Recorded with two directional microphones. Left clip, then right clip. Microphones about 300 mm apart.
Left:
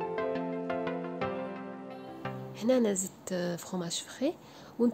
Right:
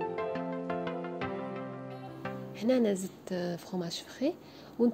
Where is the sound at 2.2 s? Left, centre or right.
Centre.